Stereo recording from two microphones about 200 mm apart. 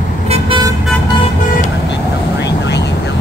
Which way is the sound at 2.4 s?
60° left (ahead or behind).